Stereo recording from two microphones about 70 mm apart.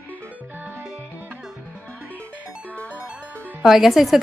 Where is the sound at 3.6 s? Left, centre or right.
Centre.